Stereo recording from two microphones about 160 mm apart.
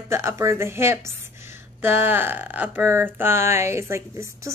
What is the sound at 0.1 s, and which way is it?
Speech, 15° right (ahead or behind).